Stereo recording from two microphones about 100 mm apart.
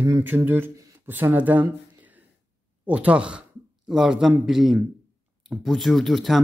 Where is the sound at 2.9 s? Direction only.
15° right (ahead or behind).